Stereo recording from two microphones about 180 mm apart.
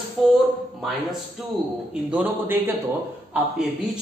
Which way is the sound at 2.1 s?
10° right (ahead or behind).